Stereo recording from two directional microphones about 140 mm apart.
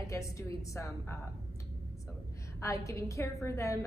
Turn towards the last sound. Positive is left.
turn(degrees=20)  # may be behind; listen again after turning